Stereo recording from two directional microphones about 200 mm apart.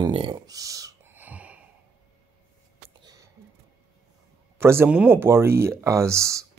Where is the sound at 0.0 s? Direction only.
25° right (ahead or behind); by 1.6 s 5° right (ahead or behind).